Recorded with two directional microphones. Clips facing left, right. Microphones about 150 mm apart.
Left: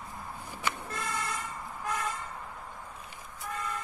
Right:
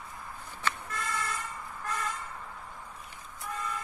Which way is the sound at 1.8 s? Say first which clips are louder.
Left 2 dB; 15° left (ahead or behind).